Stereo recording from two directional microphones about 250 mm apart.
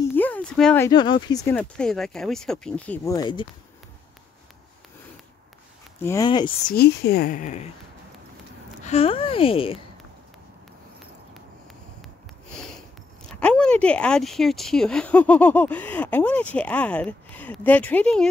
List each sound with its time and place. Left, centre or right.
0.1 s speech: centre
6.0 s speech: centre
6.7 s speech: left
8.8 s speech: left
13.4 s speech: centre